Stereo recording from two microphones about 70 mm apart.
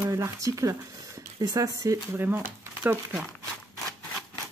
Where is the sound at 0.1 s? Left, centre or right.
Right.